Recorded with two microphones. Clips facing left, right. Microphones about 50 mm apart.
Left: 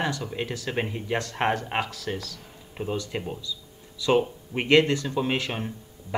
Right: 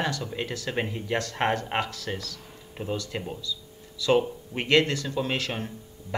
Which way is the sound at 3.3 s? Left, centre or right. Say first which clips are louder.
Even; centre.